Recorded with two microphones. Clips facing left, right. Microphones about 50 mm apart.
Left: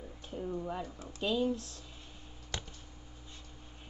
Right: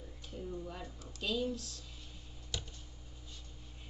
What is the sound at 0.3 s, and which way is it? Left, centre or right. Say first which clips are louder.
A woman's voice: left 6 dB; left.